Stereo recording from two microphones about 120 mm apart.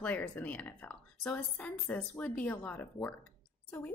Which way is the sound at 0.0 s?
10° left (ahead or behind).